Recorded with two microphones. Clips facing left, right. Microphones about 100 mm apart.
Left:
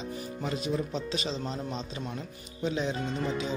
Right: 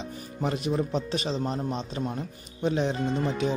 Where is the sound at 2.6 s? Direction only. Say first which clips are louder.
Right 4 dB; 55° right (ahead or behind).